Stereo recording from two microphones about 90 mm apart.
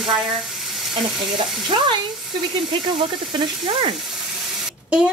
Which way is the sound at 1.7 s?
65° right (ahead or behind).